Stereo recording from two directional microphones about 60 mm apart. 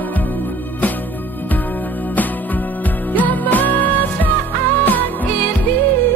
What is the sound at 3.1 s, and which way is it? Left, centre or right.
Music, left.